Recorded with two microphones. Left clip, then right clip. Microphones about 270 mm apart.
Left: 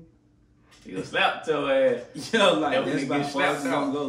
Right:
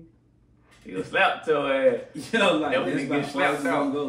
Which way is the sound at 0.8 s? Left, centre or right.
Centre.